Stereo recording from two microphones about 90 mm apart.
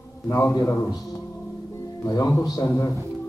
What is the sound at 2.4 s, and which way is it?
Speech, 45° left (ahead or behind).